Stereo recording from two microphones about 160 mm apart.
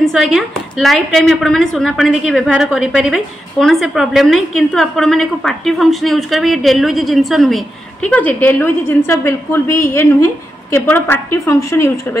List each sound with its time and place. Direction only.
0.0 s a woman's voice: centre (ahead or behind); by 12.2 s 15° left (ahead or behind)